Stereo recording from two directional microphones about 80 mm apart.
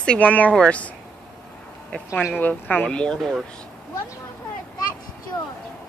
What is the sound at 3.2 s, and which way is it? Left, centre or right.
Speech, centre.